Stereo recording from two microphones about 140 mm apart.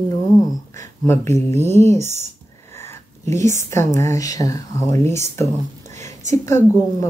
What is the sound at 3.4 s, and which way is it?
Speech, 20° left (ahead or behind).